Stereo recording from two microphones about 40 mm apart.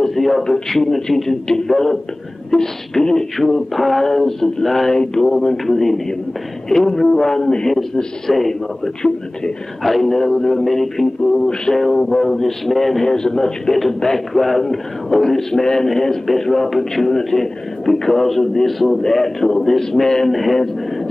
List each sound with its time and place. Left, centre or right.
0.0 s a sound: centre
0.4 s a man's voice: centre
3.7 s a man's voice: centre
11.4 s a man's voice: centre
13.0 s a man's voice: centre